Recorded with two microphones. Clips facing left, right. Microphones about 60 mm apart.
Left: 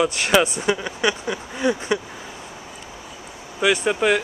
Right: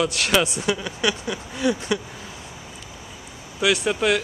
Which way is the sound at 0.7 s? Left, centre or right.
Centre.